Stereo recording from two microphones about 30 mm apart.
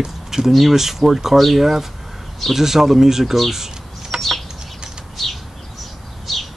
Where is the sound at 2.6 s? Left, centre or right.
Centre.